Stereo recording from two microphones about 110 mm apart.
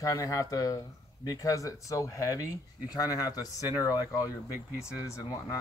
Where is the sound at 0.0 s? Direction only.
30° left (ahead or behind).